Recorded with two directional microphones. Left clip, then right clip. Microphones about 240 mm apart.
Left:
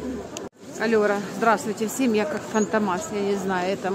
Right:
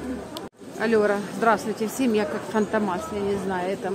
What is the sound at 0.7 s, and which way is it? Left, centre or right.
A woman's voice, centre.